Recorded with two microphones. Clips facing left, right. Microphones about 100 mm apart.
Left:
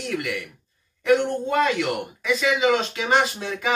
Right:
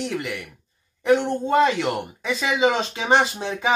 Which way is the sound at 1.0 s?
25° right (ahead or behind).